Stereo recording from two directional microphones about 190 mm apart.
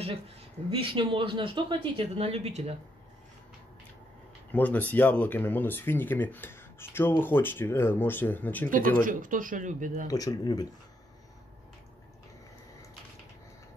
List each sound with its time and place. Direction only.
0.7 s speech: 25° right (ahead or behind)
4.5 s speech: 10° left (ahead or behind)
8.6 s speech: 45° right (ahead or behind)
10.0 s speech: 20° left (ahead or behind)